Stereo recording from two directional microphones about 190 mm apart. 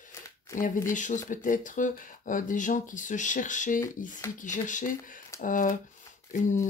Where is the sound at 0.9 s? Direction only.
40° left (ahead or behind).